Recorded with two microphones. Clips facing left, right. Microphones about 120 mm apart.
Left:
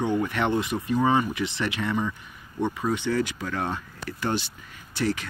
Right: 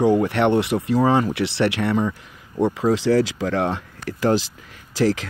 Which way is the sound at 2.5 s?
90° right.